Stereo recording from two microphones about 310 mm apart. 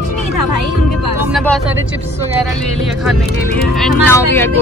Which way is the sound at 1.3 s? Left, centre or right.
Centre.